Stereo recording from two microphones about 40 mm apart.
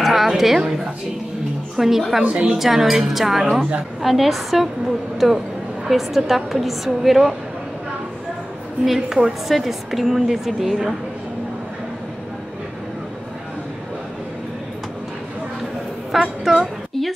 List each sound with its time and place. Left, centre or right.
0.0 s a sound: centre
1.8 s a woman's voice: centre
2.2 s a woman's voice: right
2.5 s a woman's voice: centre
5.9 s a woman's voice: centre
8.8 s a woman's voice: centre
16.1 s a sound: centre